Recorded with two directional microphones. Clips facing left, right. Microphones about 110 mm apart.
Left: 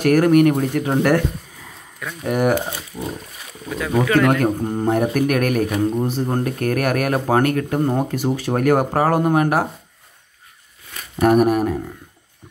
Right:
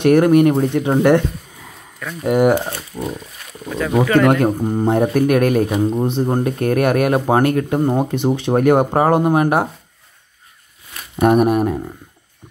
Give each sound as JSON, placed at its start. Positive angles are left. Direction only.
{"t": 0.0, "sound": "speech", "side_deg": -25}
{"t": 2.2, "sound": "speech", "side_deg": -20}
{"t": 3.6, "sound": "a man's voice", "side_deg": 0}
{"t": 4.8, "sound": "speech", "side_deg": -25}
{"t": 11.1, "sound": "speech", "side_deg": -25}